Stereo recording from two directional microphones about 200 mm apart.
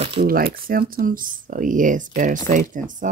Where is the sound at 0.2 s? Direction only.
50° right (ahead or behind).